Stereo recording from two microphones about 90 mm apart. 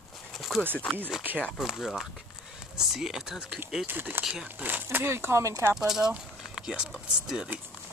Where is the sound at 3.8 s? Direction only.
25° right (ahead or behind).